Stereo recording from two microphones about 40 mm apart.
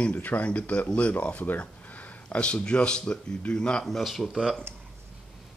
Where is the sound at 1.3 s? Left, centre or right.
Left.